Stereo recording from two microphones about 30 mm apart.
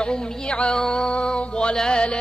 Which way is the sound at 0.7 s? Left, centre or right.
Left.